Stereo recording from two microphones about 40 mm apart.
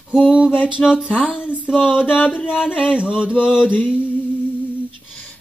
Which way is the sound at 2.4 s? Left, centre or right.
Centre.